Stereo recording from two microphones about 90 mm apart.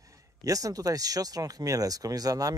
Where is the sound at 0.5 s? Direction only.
40° right (ahead or behind).